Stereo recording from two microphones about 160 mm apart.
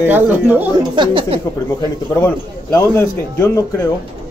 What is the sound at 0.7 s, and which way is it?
Speech, 30° right (ahead or behind).